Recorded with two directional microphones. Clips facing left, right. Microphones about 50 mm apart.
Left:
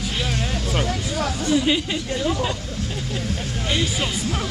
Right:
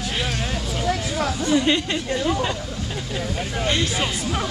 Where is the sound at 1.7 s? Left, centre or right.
Centre.